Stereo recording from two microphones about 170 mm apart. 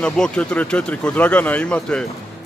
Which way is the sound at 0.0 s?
5° left (ahead or behind).